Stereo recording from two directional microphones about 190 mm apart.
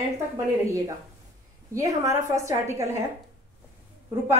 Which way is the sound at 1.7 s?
15° right (ahead or behind).